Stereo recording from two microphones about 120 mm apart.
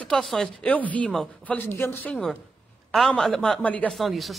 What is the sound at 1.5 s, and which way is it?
A man's voice, 20° left (ahead or behind).